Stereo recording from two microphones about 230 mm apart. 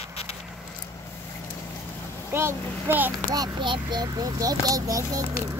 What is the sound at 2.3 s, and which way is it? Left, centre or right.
Speech, centre.